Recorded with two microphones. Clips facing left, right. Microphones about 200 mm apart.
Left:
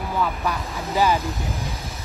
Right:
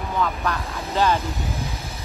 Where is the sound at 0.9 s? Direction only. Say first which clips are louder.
Even; 15° left (ahead or behind).